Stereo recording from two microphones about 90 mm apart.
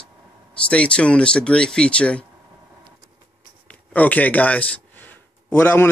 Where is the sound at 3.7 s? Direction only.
15° left (ahead or behind).